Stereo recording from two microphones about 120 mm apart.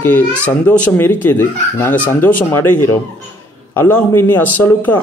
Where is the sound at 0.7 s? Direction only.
15° left (ahead or behind).